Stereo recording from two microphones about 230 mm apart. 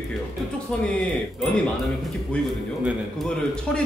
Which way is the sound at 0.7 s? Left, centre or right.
Centre.